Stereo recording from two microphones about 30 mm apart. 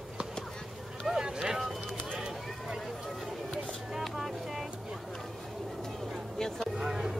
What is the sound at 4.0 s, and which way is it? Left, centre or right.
Music, centre.